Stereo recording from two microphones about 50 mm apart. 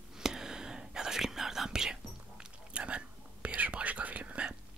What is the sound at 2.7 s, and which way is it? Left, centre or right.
Whispering, right.